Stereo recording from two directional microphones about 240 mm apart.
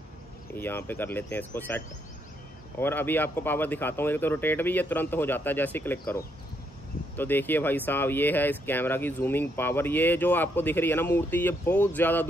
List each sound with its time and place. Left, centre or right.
0.6 s speech: centre
2.8 s speech: centre